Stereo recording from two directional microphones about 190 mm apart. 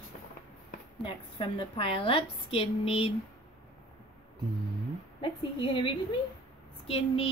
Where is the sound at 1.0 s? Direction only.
30° left (ahead or behind).